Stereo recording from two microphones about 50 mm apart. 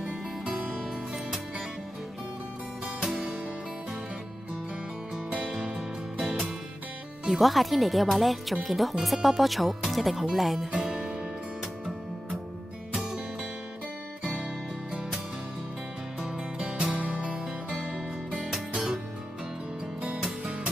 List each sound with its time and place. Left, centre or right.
0.0 s music: right
0.7 s music: centre
3.0 s music: centre
5.8 s music: centre
7.2 s speech: centre
14.2 s music: centre
16.3 s music: centre
16.9 s music: right
18.3 s music: centre
20.2 s music: centre